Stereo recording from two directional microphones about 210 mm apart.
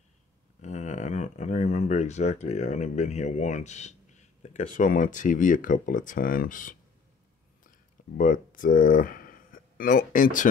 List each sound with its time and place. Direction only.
0.6 s speech: 35° left (ahead or behind)
8.2 s speech: 40° left (ahead or behind)